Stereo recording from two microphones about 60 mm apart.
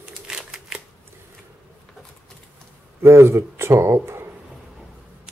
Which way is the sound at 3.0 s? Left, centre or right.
Right.